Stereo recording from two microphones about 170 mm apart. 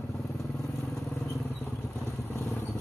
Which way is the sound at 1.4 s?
15° left (ahead or behind).